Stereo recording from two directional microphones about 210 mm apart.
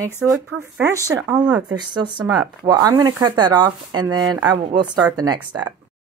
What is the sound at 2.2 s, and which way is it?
Speech, 20° right (ahead or behind).